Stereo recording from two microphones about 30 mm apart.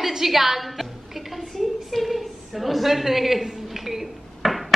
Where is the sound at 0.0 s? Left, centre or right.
Centre.